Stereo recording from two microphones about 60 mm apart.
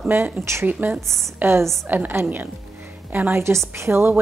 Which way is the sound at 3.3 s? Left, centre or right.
Right.